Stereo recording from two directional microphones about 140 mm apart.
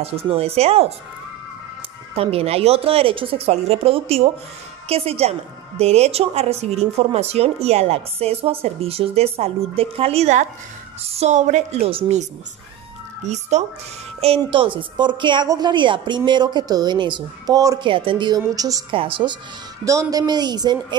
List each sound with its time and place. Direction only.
0.0 s a woman's voice: 45° right (ahead or behind)
2.1 s a woman's voice: 45° right (ahead or behind)
11.9 s a woman's voice: 45° right (ahead or behind)
14.2 s a woman's voice: 40° right (ahead or behind); by 17.8 s 25° right (ahead or behind)
17.8 s a woman's voice: 35° right (ahead or behind)
18.9 s a woman's voice: 40° right (ahead or behind)
19.8 s speech: 20° right (ahead or behind)